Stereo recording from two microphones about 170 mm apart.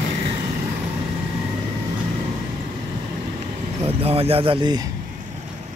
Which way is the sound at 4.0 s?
35° right (ahead or behind).